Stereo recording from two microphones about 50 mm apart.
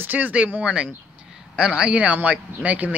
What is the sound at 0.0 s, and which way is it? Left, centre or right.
Speech, right.